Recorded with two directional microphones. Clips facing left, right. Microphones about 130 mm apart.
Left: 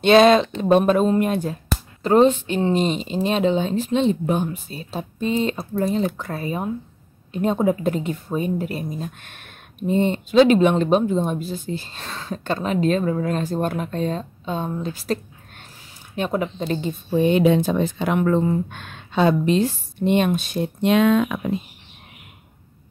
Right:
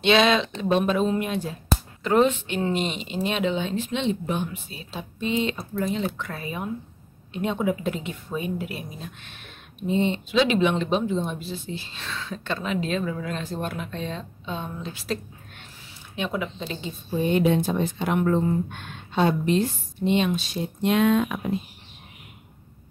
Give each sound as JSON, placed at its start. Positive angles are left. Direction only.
{"t": 0.0, "sound": "speech", "side_deg": 45}
{"t": 2.0, "sound": "speech", "side_deg": 35}
{"t": 16.2, "sound": "speech", "side_deg": 45}
{"t": 17.1, "sound": "speech", "side_deg": 85}
{"t": 20.1, "sound": "speech", "side_deg": 50}
{"t": 20.8, "sound": "speech", "side_deg": 90}